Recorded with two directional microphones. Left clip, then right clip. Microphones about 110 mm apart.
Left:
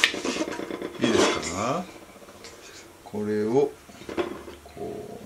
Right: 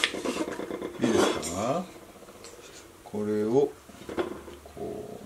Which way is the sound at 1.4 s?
15° right (ahead or behind).